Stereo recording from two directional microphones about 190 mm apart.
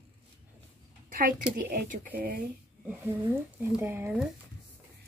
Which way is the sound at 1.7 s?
45° right (ahead or behind).